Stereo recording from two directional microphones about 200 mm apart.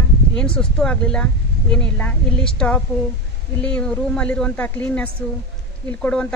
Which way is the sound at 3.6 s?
5° left (ahead or behind).